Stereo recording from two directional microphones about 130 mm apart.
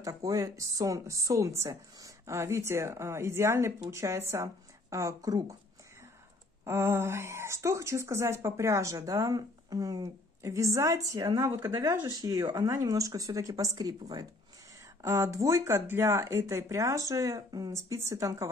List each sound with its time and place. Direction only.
0.0 s speech: 25° right (ahead or behind)
6.6 s speech: 20° right (ahead or behind)
12.0 s speech: 30° right (ahead or behind)